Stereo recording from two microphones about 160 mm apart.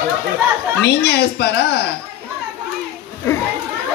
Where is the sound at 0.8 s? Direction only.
90° left.